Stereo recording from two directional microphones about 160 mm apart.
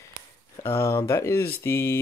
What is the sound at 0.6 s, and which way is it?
Speech, 15° left (ahead or behind).